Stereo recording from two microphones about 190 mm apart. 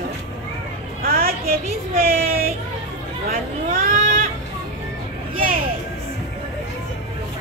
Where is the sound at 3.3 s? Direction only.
45° right (ahead or behind).